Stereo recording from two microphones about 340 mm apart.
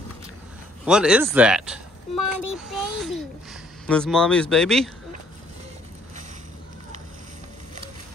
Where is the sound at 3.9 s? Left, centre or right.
Centre.